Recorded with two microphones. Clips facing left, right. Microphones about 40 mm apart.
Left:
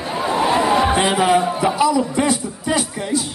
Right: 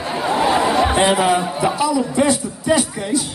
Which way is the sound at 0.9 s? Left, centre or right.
Centre.